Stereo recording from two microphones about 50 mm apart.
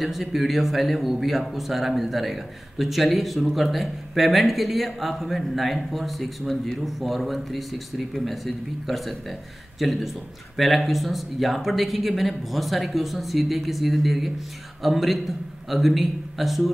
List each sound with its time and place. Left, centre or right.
0.0 s speech: centre